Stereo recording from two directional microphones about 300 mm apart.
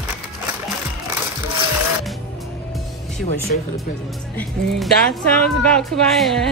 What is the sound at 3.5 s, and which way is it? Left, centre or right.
Speech, left.